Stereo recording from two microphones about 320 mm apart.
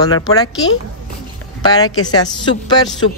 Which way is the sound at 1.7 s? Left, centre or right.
Centre.